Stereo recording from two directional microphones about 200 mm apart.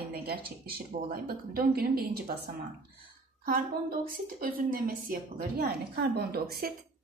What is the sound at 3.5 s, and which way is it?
A woman's voice, 45° right (ahead or behind).